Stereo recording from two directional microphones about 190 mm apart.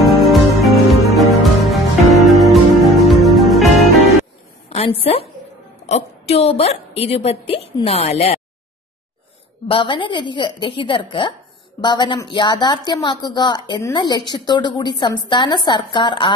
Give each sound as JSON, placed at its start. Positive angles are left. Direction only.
{"t": 0.0, "sound": "music", "side_deg": 0}
{"t": 4.6, "sound": "a sound", "side_deg": 30}
{"t": 5.0, "sound": "a woman's voice", "side_deg": 30}
{"t": 9.7, "sound": "speech", "side_deg": 25}